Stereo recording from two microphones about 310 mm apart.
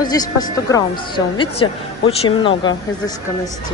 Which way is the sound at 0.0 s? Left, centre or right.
Centre.